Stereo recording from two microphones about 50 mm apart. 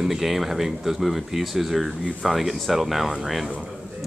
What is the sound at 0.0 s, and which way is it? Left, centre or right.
A man's voice, centre.